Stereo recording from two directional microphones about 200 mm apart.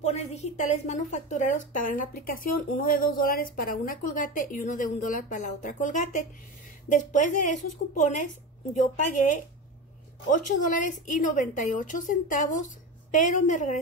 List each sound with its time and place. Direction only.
0.0 s a woman's voice: 35° left (ahead or behind)